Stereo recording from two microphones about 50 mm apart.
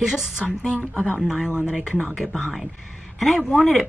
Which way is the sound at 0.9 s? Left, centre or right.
Left.